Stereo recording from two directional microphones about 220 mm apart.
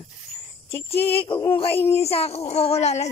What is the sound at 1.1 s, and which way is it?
Speech, 25° left (ahead or behind).